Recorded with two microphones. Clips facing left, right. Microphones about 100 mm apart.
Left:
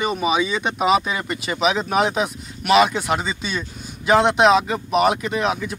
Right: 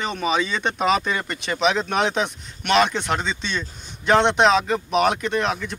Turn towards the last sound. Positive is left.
turn(degrees=5)  # may be behind; listen again after turning